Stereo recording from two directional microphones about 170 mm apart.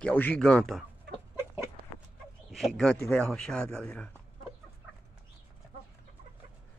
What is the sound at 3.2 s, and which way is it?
Speech, 5° left (ahead or behind).